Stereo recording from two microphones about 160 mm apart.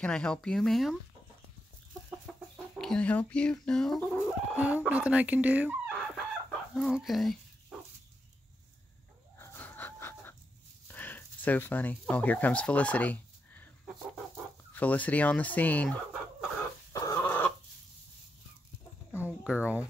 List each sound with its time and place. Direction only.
0.0 s chicken: 5° left (ahead or behind)
2.3 s chicken: 5° left (ahead or behind)
4.6 s speech: 10° right (ahead or behind)
6.7 s chicken: centre (ahead or behind)
9.4 s chicken: 10° left (ahead or behind)
10.9 s speech: 10° left (ahead or behind)
14.7 s fowl: 10° left (ahead or behind)
16.9 s a sound: 20° left (ahead or behind)
19.2 s speech: 5° right (ahead or behind)